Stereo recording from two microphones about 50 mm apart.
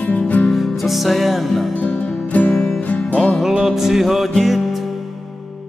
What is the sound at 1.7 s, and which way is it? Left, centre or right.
Music, left.